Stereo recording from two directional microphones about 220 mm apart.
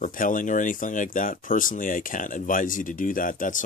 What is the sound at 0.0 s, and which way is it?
Speech, 40° left (ahead or behind).